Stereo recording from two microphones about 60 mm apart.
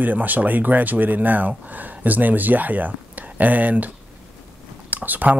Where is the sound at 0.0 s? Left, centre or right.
Right.